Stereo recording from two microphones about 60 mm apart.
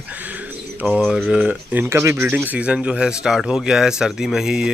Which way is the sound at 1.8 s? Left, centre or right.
Right.